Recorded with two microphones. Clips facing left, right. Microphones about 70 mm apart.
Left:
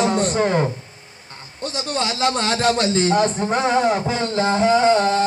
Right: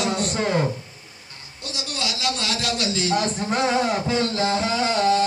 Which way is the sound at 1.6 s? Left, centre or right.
Left.